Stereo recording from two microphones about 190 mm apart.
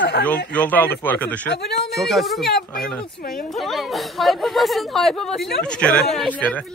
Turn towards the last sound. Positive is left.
turn(degrees=5)  # may be behind; listen again after turning